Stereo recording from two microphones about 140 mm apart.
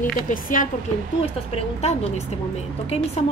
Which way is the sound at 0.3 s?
75° left (ahead or behind).